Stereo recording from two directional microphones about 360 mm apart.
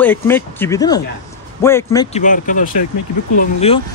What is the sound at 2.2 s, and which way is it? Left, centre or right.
Speech, left.